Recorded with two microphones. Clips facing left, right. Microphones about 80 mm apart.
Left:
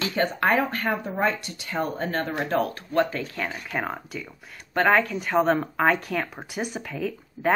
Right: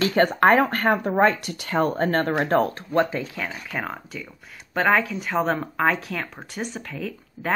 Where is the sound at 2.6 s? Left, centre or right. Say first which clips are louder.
Right 2 dB; right.